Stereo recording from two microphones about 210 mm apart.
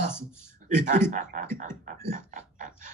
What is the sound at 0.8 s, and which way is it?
A man's voice, 35° right (ahead or behind).